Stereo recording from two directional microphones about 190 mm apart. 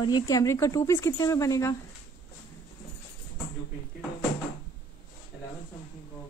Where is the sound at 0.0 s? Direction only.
20° left (ahead or behind).